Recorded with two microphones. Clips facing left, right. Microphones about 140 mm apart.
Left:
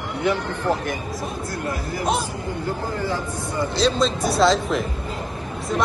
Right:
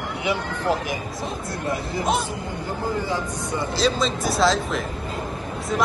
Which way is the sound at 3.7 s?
Centre (ahead or behind).